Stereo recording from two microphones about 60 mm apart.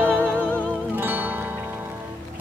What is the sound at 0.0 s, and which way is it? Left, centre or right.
Music, right.